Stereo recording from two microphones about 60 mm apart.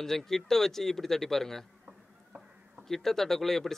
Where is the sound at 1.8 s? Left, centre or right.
Centre.